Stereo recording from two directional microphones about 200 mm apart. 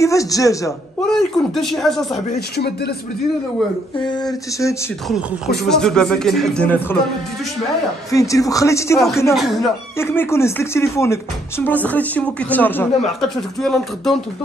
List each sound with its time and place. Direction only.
0.0 s speech: 15° left (ahead or behind)
1.0 s speech: centre (ahead or behind)
2.3 s speech: 55° left (ahead or behind)
4.0 s a sound: 20° left (ahead or behind)
5.7 s speech: 5° left (ahead or behind)
8.1 s speech: 15° left (ahead or behind)
9.3 s speech: centre (ahead or behind)
9.9 s speech: 10° left (ahead or behind)